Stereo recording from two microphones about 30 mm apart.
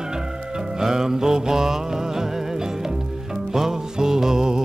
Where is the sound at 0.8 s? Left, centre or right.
Centre.